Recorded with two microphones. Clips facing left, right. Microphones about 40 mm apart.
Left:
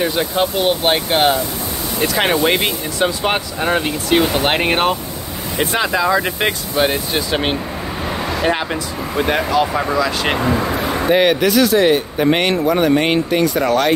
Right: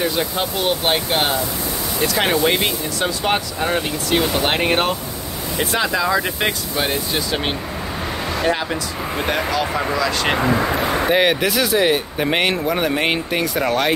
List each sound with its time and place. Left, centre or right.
0.0 s speech: centre
9.3 s speech: centre
11.1 s speech: centre